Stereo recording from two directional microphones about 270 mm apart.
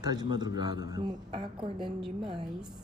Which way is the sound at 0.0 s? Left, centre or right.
Centre.